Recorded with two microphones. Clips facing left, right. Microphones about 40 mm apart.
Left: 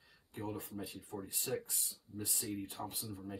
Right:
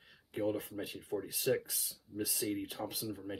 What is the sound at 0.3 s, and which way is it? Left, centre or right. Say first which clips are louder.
Speech: right 7 dB; right.